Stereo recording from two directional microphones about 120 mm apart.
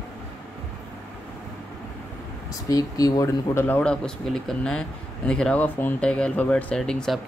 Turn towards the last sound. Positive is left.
turn(degrees=5)  # may be behind; listen again after turning